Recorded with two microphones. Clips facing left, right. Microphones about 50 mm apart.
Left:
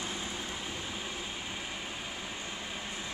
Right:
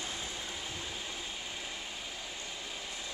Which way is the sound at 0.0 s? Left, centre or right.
Centre.